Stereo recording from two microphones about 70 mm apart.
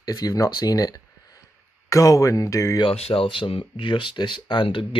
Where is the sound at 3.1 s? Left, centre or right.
Left.